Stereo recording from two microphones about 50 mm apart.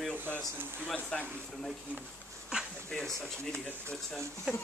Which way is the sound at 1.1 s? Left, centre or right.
Centre.